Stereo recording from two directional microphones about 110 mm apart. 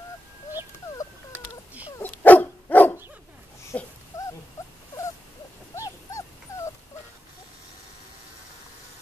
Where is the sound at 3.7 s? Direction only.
15° left (ahead or behind).